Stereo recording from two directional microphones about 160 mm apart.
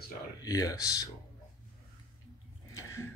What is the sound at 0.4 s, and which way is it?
Speech, 20° left (ahead or behind).